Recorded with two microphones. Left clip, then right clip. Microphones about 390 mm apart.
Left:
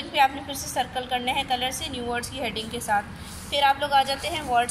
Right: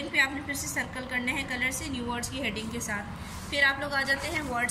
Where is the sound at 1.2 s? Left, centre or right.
Centre.